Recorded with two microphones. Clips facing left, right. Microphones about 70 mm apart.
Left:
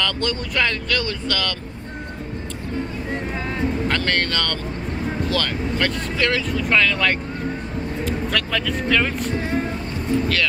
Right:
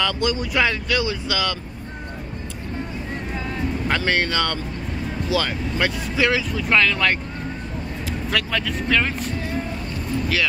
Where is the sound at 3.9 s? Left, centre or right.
Centre.